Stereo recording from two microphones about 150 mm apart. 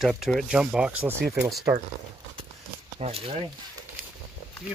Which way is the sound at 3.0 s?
40° right (ahead or behind).